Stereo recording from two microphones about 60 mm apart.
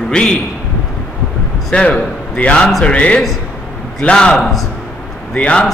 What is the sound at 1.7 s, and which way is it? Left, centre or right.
A man's voice, centre.